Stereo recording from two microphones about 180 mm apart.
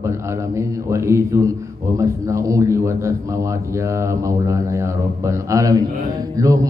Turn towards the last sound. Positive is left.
turn(degrees=-20)  # may be behind; listen again after turning